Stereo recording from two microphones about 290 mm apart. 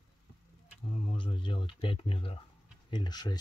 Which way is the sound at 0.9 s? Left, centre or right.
Centre.